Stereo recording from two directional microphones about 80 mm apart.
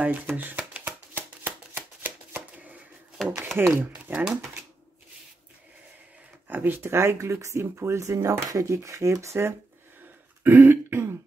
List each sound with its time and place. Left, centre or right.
0.4 s shuffling cards: centre
3.2 s speech: centre
3.5 s speech: right
3.8 s speech: right
4.2 s speech: centre
6.4 s speech: right
10.4 s throat clearing: right